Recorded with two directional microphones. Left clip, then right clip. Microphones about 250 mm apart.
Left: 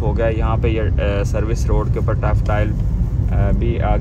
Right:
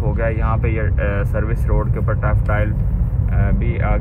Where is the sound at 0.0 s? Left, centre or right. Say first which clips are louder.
Left 2 dB; left.